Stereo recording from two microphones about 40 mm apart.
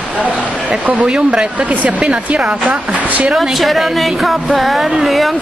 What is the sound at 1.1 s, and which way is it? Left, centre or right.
Speech, right.